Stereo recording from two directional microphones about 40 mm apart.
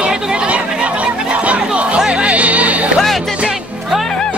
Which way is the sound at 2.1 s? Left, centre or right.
Right.